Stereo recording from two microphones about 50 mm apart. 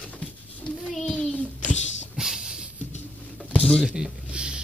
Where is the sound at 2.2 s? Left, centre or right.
Centre.